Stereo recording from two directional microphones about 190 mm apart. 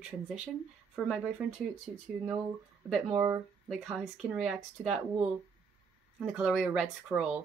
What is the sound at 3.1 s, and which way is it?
Speech, 30° right (ahead or behind).